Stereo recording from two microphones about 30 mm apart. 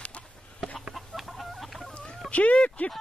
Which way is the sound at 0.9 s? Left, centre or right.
Centre.